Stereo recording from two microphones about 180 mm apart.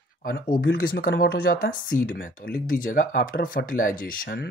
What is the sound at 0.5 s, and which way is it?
Speech, 55° left (ahead or behind).